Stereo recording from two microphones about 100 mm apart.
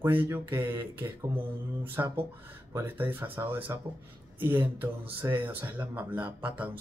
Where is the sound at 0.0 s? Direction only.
20° right (ahead or behind).